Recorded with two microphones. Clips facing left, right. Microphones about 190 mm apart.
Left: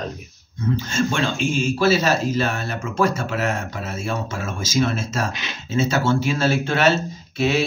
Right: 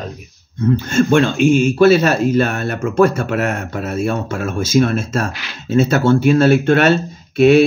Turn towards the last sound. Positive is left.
turn(degrees=-60)  # may be behind; listen again after turning